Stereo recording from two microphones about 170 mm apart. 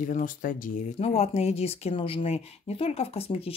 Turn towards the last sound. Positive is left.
turn(degrees=35)  # may be behind; listen again after turning